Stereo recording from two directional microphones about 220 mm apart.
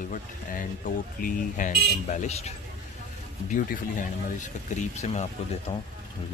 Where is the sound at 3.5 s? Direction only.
35° left (ahead or behind).